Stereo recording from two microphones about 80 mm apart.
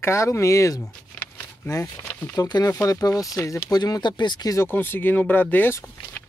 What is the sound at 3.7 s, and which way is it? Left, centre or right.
Speech, left.